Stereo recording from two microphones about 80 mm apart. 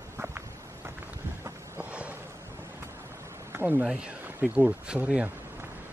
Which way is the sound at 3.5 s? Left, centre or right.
Right.